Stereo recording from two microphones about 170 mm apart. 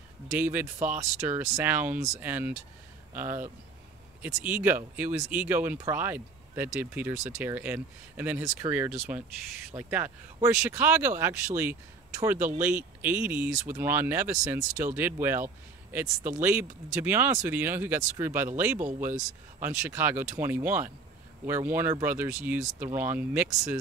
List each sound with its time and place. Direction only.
0.4 s speech: 10° right (ahead or behind)
19.6 s speech: 15° right (ahead or behind)